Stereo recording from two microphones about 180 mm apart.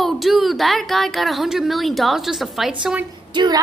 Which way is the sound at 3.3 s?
25° right (ahead or behind).